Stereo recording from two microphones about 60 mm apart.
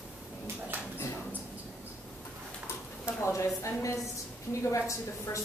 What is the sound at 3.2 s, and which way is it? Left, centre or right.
A woman's voice, left.